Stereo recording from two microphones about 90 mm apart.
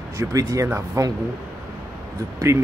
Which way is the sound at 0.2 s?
40° right (ahead or behind).